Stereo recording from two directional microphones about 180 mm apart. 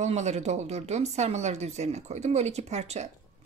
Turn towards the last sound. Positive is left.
turn(degrees=-40)  # may be behind; listen again after turning